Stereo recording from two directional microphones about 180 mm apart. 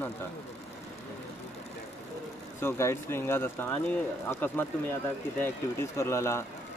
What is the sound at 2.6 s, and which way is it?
Speech, 15° left (ahead or behind).